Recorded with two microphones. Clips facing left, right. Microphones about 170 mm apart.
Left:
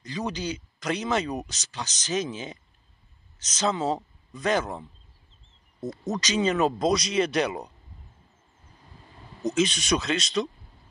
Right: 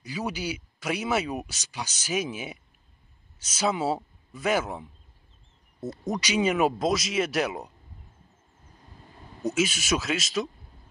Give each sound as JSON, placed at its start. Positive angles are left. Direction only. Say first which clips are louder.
{"t": 0.0, "sound": "speech", "louder": "left 1 dB", "side_deg": -10}
{"t": 9.4, "sound": "speech", "louder": "left 2 dB", "side_deg": -5}